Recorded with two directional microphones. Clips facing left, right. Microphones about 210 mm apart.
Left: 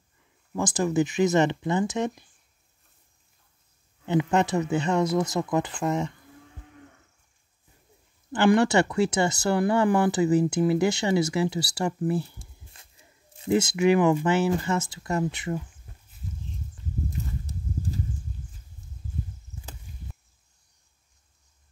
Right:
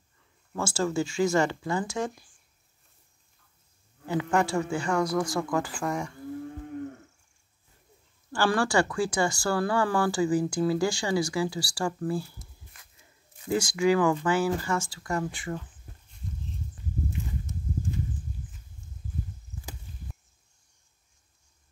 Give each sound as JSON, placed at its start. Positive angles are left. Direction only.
{"t": 0.6, "sound": "speech", "side_deg": 15}
{"t": 4.0, "sound": "speech", "side_deg": 20}
{"t": 8.3, "sound": "speech", "side_deg": 20}
{"t": 17.1, "sound": "a sound", "side_deg": 35}